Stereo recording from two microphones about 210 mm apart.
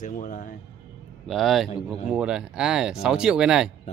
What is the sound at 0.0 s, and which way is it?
Speech, 40° left (ahead or behind).